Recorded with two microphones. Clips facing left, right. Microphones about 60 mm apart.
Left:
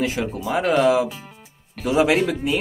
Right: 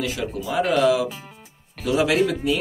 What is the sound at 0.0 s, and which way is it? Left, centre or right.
Speech, left.